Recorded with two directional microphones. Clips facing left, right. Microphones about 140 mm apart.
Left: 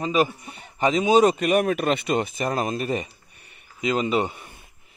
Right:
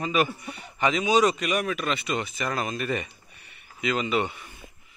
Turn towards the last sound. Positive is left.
turn(degrees=35)  # may be behind; listen again after turning